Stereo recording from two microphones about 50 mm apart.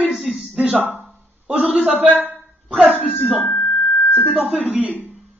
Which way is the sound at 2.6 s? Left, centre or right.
Right.